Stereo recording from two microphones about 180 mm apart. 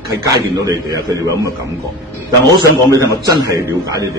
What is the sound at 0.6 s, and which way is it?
A man's voice, 20° right (ahead or behind).